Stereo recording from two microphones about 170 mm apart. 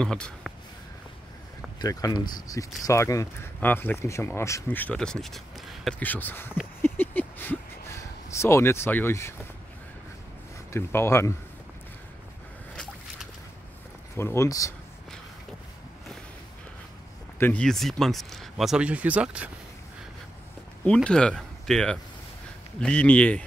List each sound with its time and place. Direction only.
0.0 s speech: 5° left (ahead or behind)
1.8 s speech: 20° left (ahead or behind)
6.8 s a sound: 10° left (ahead or behind)
10.7 s speech: 15° left (ahead or behind)
14.1 s speech: 15° left (ahead or behind)
17.4 s speech: 10° left (ahead or behind); by 19.5 s 5° right (ahead or behind)
20.8 s speech: 5° left (ahead or behind)